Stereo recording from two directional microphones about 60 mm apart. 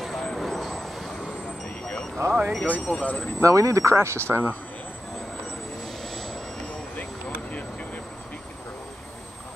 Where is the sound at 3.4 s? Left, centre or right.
Right.